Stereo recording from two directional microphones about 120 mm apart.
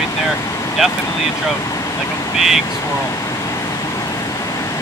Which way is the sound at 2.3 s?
Centre (ahead or behind).